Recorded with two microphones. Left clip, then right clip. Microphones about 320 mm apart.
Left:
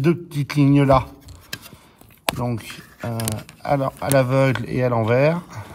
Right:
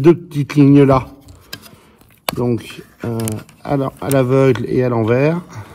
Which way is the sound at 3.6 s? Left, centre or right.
Left.